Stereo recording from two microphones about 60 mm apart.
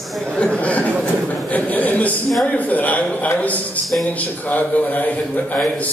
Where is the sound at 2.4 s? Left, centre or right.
Left.